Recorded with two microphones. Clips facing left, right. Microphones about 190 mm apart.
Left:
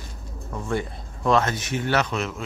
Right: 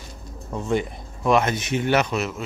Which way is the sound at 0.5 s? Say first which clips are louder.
Right 3 dB; 20° right (ahead or behind).